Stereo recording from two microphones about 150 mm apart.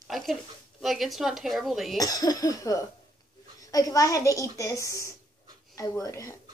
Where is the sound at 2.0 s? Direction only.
25° left (ahead or behind).